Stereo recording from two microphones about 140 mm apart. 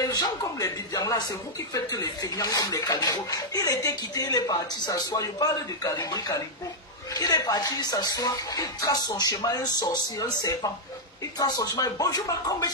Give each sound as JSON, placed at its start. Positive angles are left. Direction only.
{"t": 0.0, "sound": "speech", "side_deg": 25}